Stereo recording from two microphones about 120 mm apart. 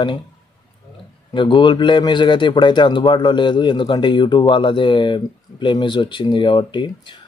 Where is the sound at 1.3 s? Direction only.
40° left (ahead or behind).